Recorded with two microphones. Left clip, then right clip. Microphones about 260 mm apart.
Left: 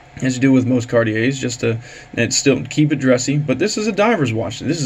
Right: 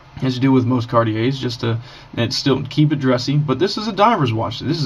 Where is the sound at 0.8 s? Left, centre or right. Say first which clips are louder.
Left 1 dB; centre.